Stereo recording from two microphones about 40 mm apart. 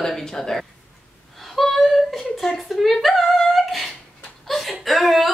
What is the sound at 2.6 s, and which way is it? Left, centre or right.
Humming, centre.